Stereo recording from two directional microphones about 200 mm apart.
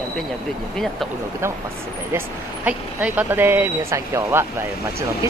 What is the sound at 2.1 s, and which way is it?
Speech, 5° right (ahead or behind).